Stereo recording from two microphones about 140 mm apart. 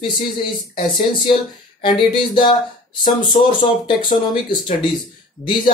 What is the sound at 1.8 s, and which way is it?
Speech, 40° left (ahead or behind).